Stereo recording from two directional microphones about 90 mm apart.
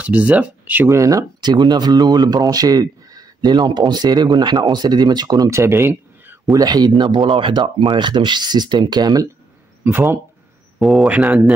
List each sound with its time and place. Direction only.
0.0 s speech: 15° right (ahead or behind)
0.8 s speech: 35° right (ahead or behind)
1.4 s speech: 55° right (ahead or behind)
5.5 s speech: 30° right (ahead or behind)
6.5 s speech: 45° right (ahead or behind)
7.0 s speech: 65° right (ahead or behind); by 9.3 s 45° right (ahead or behind)
10.8 s speech: centre (ahead or behind)
11.1 s speech: 15° right (ahead or behind)